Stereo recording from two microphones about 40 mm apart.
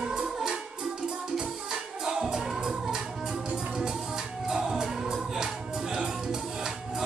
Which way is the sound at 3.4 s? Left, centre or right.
Right.